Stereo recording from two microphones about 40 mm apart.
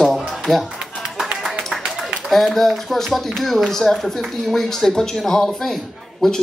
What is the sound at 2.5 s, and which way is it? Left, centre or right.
Speech, centre.